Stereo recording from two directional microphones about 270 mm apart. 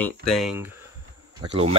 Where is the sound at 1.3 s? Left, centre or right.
Right.